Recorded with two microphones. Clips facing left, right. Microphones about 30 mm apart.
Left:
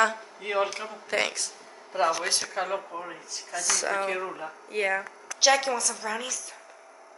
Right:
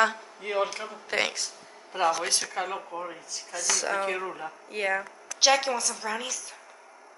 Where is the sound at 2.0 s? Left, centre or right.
Centre.